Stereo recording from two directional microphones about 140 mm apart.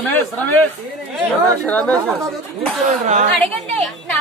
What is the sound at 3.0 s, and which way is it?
Speech, 55° right (ahead or behind).